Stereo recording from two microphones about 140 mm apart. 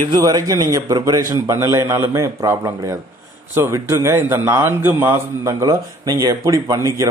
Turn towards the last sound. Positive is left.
turn(degrees=-25)  # may be behind; listen again after turning